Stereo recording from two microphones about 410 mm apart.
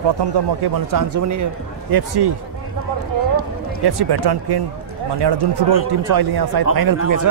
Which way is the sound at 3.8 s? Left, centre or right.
Right.